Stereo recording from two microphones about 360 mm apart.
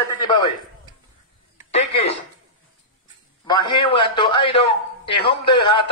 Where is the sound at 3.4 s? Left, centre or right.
Centre.